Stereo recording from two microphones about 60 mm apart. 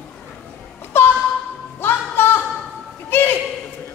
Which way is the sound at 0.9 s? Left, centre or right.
Left.